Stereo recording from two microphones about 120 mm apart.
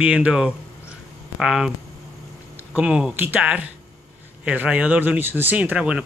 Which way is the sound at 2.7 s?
10° right (ahead or behind).